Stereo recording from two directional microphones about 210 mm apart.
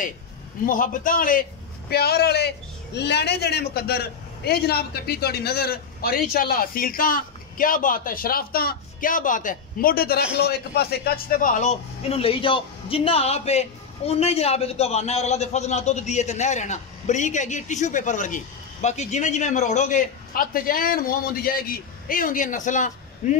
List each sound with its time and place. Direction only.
0.7 s a man's voice: 40° left (ahead or behind)